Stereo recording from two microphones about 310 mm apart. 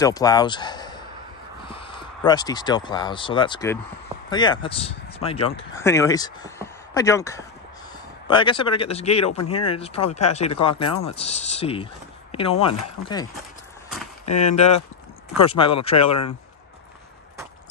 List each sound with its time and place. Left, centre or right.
0.0 s speech: centre
9.4 s speech: left
10.3 s speech: centre